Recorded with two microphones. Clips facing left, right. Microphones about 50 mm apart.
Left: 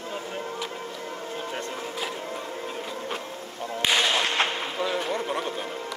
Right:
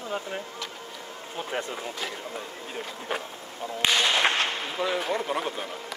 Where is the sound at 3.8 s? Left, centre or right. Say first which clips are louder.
Even; centre.